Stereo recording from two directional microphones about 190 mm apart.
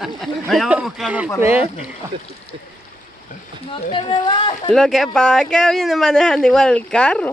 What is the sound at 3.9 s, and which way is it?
Speech, 25° left (ahead or behind).